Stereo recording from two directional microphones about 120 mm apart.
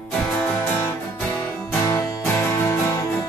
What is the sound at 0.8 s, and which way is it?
Music, 15° left (ahead or behind).